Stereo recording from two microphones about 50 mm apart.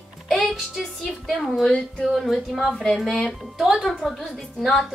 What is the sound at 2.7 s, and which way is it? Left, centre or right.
Speech, centre.